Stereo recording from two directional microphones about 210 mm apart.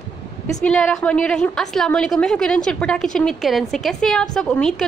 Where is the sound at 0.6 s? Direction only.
Centre (ahead or behind).